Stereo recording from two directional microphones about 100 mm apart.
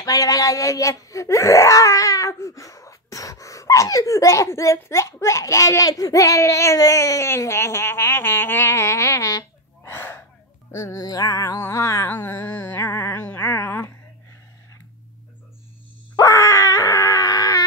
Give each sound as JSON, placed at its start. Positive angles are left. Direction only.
{"t": 0.0, "sound": "speech", "side_deg": 35}
{"t": 9.8, "sound": "gasp", "side_deg": 20}
{"t": 10.7, "sound": "music", "side_deg": 30}
{"t": 16.2, "sound": "dog", "side_deg": 35}